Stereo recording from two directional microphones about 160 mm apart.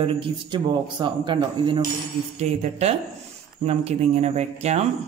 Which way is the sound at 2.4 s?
45° right (ahead or behind).